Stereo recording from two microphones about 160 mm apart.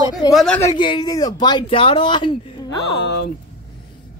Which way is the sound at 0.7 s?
30° left (ahead or behind).